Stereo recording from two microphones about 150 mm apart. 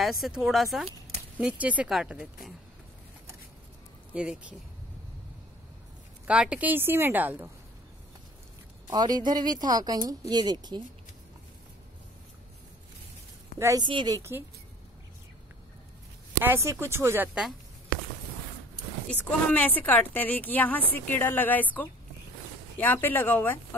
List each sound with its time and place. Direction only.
0.0 s a woman's voice: centre (ahead or behind)
4.1 s a woman's voice: 5° right (ahead or behind)
6.2 s a woman's voice: 5° right (ahead or behind)
8.9 s speech: 25° right (ahead or behind)
13.6 s speech: 20° right (ahead or behind)
13.8 s a woman's voice: 30° right (ahead or behind)
14.1 s a woman's voice: 15° right (ahead or behind)
16.4 s a woman's voice: 20° right (ahead or behind)
19.0 s speech: 10° left (ahead or behind)